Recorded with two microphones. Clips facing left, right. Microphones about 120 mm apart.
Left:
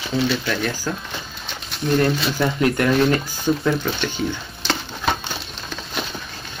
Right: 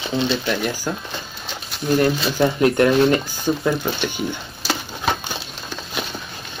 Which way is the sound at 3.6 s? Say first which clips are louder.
Even; 15° right (ahead or behind).